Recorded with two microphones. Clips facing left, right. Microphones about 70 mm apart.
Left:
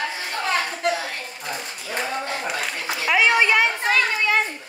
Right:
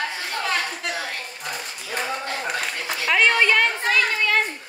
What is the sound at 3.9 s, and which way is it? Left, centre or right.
Children playing, centre.